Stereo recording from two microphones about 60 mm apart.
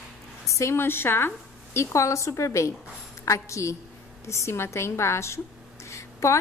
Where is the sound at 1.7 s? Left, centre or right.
Left.